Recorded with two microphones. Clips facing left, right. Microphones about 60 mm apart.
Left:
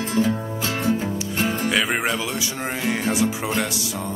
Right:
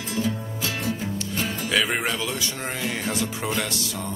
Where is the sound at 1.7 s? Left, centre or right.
Centre.